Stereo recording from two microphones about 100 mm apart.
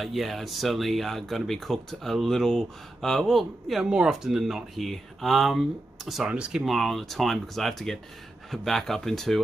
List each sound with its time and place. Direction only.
0.0 s speech: centre (ahead or behind)